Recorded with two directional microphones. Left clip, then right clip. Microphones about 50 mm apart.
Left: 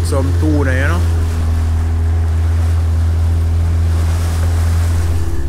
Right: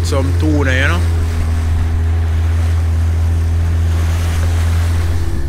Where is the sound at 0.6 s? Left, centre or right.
Centre.